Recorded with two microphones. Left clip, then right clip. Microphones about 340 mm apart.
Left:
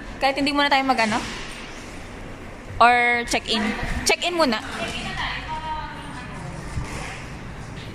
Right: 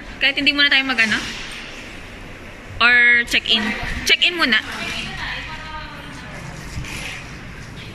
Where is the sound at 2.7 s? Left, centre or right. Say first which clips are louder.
Right 3 dB; centre.